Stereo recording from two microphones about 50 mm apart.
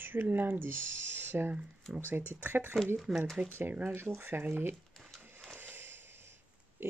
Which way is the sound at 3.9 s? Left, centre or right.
Right.